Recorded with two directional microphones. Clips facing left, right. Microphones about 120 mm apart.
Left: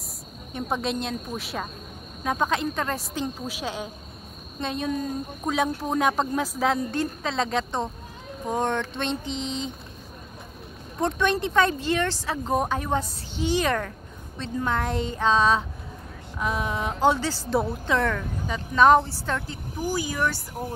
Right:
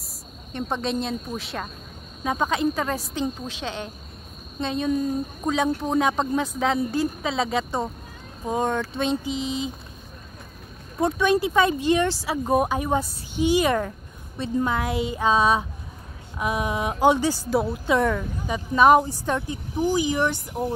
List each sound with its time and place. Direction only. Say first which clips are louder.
0.5 s speech: right 1 dB; 5° left (ahead or behind)
11.0 s speech: right 3 dB; 5° right (ahead or behind)